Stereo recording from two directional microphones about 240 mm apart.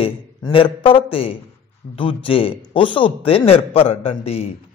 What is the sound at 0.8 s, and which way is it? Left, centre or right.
A man's voice, left.